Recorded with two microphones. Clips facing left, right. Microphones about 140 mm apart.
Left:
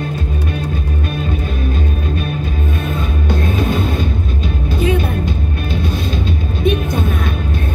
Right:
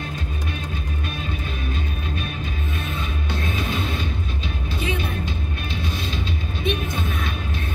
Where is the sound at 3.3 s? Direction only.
45° left (ahead or behind).